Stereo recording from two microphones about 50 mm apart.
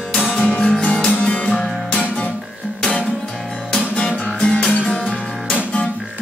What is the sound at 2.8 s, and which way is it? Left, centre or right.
Music, centre.